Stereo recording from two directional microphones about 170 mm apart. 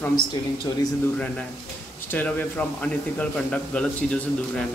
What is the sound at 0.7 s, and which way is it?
Speech, 25° left (ahead or behind).